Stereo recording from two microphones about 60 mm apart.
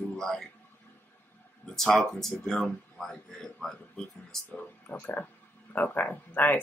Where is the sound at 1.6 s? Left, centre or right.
Centre.